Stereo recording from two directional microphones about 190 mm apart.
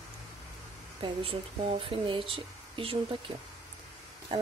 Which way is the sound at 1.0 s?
30° right (ahead or behind).